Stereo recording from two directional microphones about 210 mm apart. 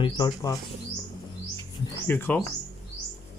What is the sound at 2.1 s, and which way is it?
Speech, 10° left (ahead or behind).